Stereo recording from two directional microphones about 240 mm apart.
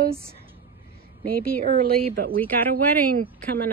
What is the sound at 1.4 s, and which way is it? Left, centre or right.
Speech, right.